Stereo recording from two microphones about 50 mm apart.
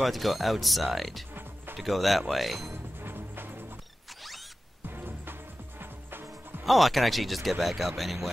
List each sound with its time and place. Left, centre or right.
0.0 s speech: centre
3.0 s music: right
4.8 s music: right
6.6 s speech: centre